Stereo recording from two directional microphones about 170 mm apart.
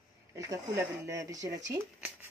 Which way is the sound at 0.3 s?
20° right (ahead or behind).